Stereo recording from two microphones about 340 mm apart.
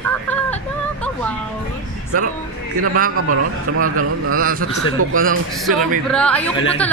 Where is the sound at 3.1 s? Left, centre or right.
Right.